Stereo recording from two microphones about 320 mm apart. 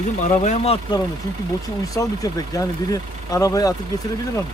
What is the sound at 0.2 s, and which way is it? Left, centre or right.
Speech, left.